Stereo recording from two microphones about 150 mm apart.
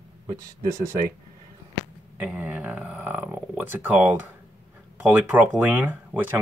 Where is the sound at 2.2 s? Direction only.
10° right (ahead or behind).